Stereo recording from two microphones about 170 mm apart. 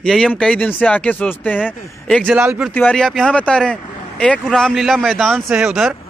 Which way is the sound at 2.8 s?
5° left (ahead or behind).